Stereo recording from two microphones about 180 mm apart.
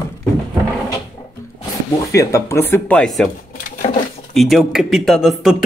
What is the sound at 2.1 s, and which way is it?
Speech, 15° left (ahead or behind).